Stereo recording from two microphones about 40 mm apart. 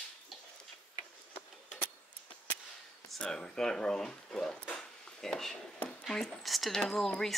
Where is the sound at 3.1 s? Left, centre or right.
Centre.